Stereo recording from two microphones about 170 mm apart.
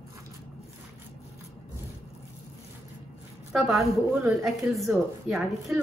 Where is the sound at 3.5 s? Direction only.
Centre (ahead or behind).